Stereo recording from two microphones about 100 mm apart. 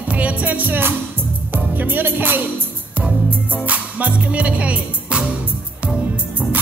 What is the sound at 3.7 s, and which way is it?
Music, 15° right (ahead or behind).